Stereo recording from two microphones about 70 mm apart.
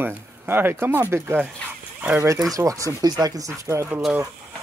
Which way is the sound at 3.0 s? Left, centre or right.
Right.